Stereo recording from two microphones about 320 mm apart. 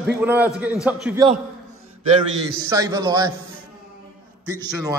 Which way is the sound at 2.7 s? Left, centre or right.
Centre.